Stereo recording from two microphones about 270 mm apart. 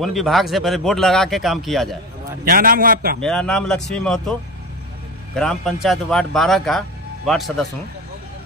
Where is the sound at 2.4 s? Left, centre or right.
Right.